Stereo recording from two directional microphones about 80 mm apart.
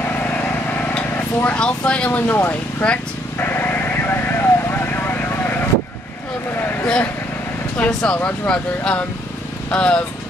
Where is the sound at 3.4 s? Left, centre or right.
Left.